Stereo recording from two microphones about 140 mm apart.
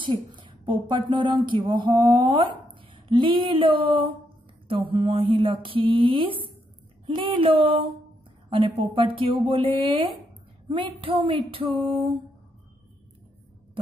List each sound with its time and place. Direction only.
0.0 s speech: 35° right (ahead or behind)